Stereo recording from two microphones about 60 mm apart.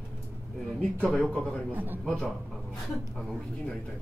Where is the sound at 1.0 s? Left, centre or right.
Centre.